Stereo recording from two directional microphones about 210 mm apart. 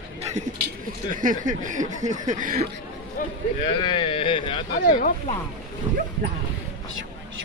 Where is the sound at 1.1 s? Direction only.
40° right (ahead or behind).